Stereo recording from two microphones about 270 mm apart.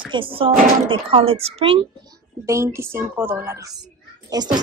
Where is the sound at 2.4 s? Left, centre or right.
Centre.